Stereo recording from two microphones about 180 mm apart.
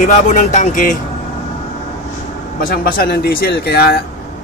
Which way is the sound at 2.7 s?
55° left (ahead or behind).